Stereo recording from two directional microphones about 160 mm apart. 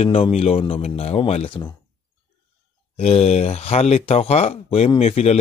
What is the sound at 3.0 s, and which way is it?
Speech, 40° left (ahead or behind).